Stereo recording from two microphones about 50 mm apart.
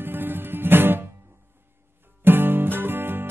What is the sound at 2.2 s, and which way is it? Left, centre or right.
Music, right.